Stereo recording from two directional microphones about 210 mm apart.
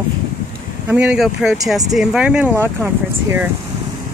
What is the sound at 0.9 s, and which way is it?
Speech, 5° right (ahead or behind).